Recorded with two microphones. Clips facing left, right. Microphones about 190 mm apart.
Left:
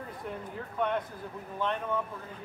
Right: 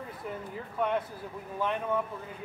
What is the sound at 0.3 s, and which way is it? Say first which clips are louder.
Speech: right 1 dB; 5° right (ahead or behind).